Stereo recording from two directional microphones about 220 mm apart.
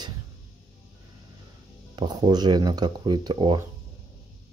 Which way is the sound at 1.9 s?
20° right (ahead or behind).